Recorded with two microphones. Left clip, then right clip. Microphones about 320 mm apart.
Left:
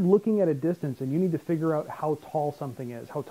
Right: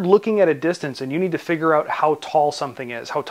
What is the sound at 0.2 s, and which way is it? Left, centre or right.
Speech, centre.